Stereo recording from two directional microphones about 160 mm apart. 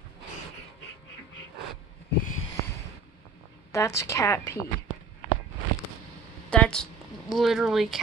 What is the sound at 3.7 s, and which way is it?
Speech, 15° left (ahead or behind).